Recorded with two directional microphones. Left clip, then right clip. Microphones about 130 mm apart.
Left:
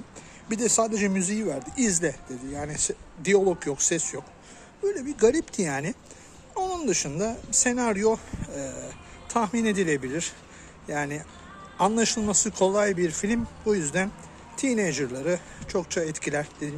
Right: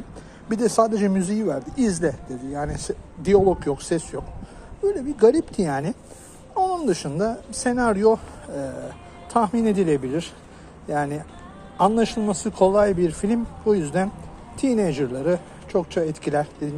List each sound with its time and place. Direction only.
0.7 s a man's voice: 10° left (ahead or behind)